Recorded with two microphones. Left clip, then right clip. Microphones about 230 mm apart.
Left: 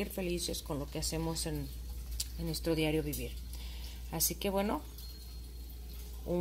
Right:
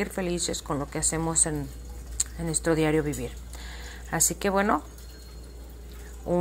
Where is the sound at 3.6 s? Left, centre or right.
Centre.